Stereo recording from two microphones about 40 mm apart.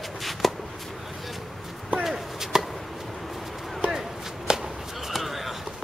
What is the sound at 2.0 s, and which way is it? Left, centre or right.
Chop, centre.